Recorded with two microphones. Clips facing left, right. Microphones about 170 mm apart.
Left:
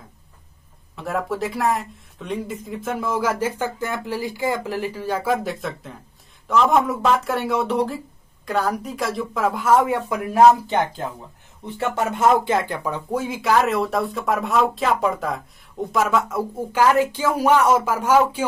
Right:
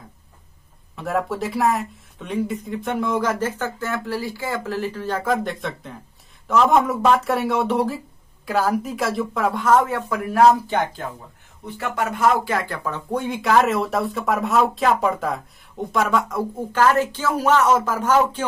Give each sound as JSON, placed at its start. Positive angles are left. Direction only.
{"t": 0.9, "sound": "speech", "side_deg": 0}
{"t": 13.2, "sound": "speech", "side_deg": 0}